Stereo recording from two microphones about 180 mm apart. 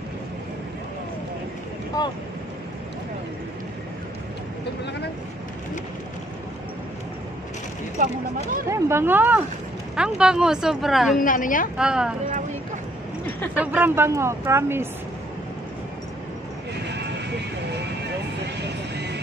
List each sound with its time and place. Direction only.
8.0 s speech: 50° right (ahead or behind)
8.6 s speech: 15° right (ahead or behind)
11.1 s a woman's voice: 50° left (ahead or behind)
11.7 s speech: 5° right (ahead or behind)
13.6 s speech: 10° right (ahead or behind)
18.6 s vehicle: 70° right (ahead or behind)